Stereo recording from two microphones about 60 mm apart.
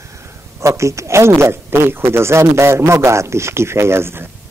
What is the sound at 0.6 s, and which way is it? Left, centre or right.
Speech, right.